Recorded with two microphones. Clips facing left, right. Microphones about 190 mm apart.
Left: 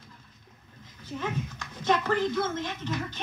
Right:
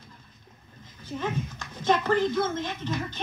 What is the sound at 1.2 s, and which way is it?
Speech, 25° right (ahead or behind).